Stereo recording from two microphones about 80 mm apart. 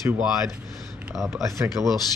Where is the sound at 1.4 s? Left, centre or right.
Right.